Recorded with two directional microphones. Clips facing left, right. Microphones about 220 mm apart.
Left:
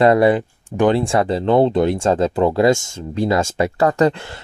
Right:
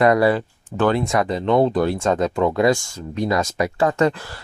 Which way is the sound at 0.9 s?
30° left (ahead or behind).